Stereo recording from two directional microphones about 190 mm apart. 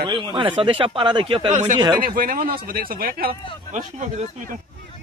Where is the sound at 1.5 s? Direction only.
40° right (ahead or behind).